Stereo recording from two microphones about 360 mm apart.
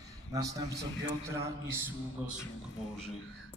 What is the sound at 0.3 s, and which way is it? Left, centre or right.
A man's voice, centre.